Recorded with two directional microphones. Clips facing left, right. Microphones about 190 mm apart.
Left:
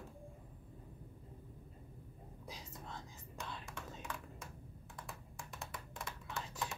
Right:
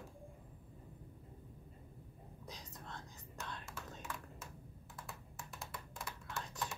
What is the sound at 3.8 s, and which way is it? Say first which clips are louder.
Computer keyboard: left 1 dB; 5° right (ahead or behind).